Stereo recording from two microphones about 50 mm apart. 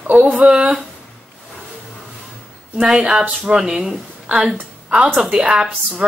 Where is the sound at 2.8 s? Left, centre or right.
Centre.